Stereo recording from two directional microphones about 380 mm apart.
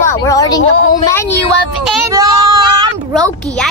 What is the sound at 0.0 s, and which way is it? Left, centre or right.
A woman's voice, centre.